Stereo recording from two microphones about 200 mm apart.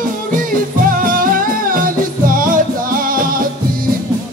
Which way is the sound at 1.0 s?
45° right (ahead or behind).